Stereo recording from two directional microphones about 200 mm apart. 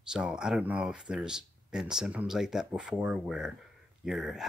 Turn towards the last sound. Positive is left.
turn(degrees=0)  # may be behind; listen again after turning